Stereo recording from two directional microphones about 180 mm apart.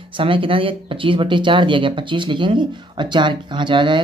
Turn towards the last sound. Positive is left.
turn(degrees=-25)  # may be behind; listen again after turning